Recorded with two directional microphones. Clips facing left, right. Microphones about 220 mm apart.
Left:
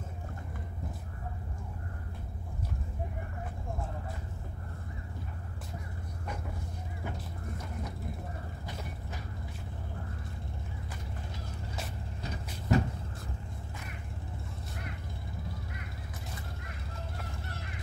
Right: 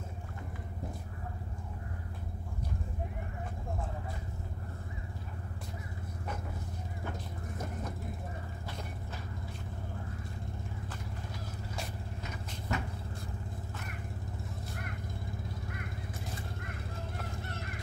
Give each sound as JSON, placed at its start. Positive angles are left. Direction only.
{"t": 12.2, "sound": "vehicle", "side_deg": 35}